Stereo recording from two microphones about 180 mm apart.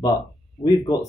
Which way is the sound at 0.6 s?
20° left (ahead or behind).